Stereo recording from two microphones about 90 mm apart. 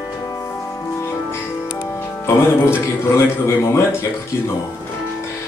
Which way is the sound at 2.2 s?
30° left (ahead or behind).